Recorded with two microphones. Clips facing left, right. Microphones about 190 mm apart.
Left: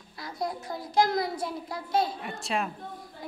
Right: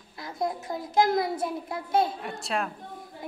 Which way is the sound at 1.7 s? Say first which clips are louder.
Right 2 dB; 55° right (ahead or behind).